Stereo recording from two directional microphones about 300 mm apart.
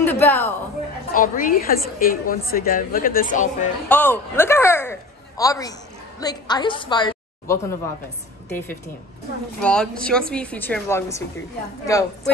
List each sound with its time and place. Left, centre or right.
0.0 s a man's voice: centre
1.1 s a woman's voice: left
3.9 s a woman's voice: centre